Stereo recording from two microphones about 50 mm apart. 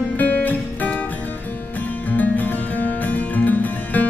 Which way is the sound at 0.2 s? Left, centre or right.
Left.